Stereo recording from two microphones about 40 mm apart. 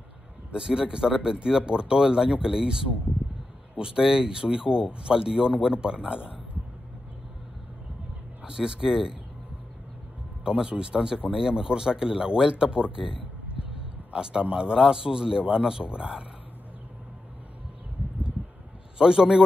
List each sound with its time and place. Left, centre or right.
0.5 s speech: centre
8.5 s speech: centre
10.4 s speech: right
14.1 s speech: right
18.9 s speech: centre